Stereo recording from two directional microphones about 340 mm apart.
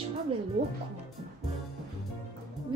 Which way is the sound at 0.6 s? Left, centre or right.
Right.